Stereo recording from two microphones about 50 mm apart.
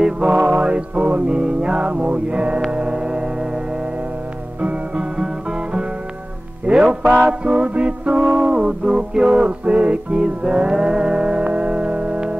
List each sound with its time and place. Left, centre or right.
0.0 s music: centre
2.7 s gong: centre
4.6 s music: right